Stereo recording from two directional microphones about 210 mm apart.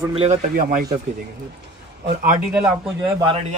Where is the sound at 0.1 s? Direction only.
30° right (ahead or behind).